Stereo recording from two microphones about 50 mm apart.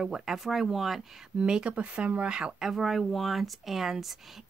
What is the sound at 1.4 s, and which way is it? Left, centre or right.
Speech, centre.